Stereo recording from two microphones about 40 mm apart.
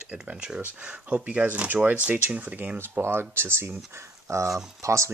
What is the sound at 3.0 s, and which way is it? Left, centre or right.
Speech, right.